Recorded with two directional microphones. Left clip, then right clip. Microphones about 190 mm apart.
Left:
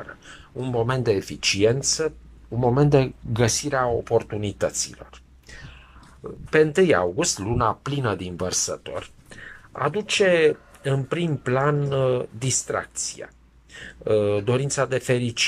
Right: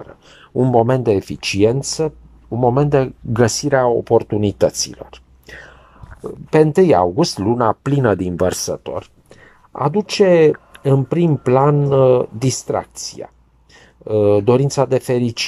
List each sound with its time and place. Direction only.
0.6 s speech: 40° right (ahead or behind)
0.8 s speech: 25° right (ahead or behind)
2.6 s speech: 10° right (ahead or behind)
3.4 s speech: 25° right (ahead or behind)
6.2 s speech: 20° right (ahead or behind)